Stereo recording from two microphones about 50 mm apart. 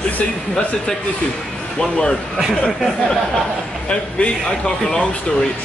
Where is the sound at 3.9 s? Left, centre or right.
Left.